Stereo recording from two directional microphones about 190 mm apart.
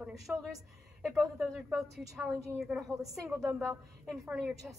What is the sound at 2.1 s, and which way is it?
Speech, 10° right (ahead or behind).